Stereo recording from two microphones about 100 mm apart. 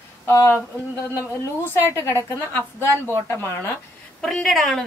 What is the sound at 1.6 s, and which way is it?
A woman's voice, 25° left (ahead or behind).